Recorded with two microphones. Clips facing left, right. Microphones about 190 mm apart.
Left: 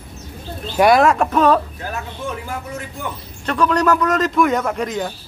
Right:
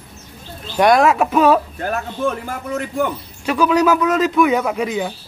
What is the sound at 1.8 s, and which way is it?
Speech, 55° right (ahead or behind).